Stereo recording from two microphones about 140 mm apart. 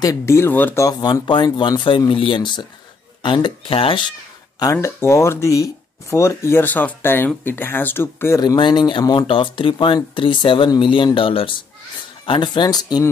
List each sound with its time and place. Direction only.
0.0 s speech: 20° left (ahead or behind)
0.8 s speech: 30° left (ahead or behind)
4.8 s speech: 20° left (ahead or behind)